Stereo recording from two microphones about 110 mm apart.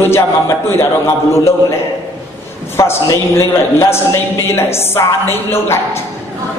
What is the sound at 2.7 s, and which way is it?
A man's voice, 25° left (ahead or behind).